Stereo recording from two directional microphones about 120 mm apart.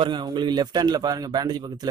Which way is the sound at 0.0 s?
40° right (ahead or behind).